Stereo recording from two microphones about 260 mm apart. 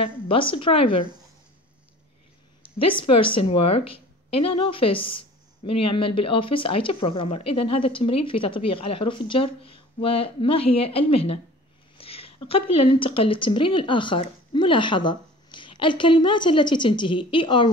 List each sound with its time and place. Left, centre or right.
0.0 s speech: left
3.2 s speech: left
12.0 s a sound: left
12.7 s speech: left